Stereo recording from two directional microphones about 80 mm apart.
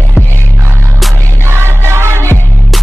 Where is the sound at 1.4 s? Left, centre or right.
Right.